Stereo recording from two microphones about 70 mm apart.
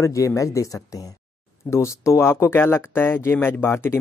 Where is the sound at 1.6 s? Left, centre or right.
Left.